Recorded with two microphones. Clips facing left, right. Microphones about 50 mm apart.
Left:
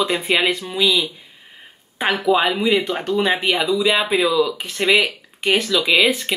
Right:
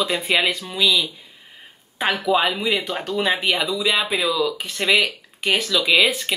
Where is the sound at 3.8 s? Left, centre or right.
Centre.